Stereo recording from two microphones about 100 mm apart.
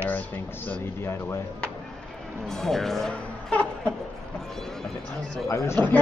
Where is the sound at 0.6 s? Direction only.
25° left (ahead or behind).